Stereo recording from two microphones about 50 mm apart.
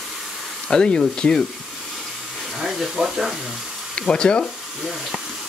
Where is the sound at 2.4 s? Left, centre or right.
Centre.